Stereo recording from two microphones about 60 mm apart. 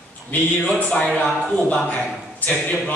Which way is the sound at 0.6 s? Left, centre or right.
Centre.